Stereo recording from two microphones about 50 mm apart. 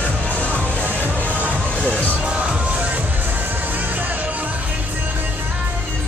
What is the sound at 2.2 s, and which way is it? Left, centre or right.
Music, right.